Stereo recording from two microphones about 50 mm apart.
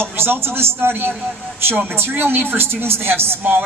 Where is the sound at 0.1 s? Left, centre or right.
Right.